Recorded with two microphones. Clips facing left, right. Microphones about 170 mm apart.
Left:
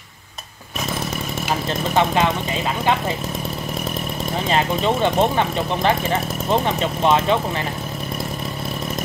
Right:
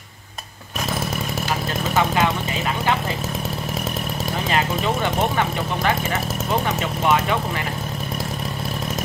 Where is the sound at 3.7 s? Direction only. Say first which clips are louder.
Left 1 dB; centre (ahead or behind).